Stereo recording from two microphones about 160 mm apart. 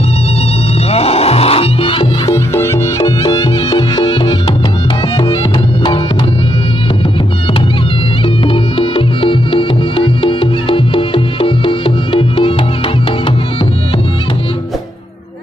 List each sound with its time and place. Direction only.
0.9 s music: 40° left (ahead or behind)
2.2 s music: 15° left (ahead or behind)
8.5 s music: 35° left (ahead or behind)